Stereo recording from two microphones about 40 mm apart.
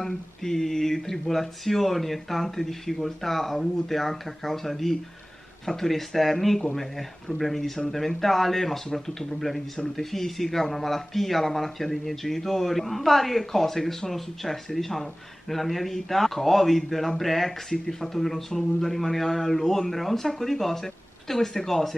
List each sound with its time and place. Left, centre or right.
0.0 s speech: centre